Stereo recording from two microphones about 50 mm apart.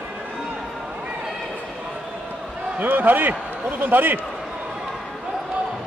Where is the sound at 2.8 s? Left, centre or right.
Right.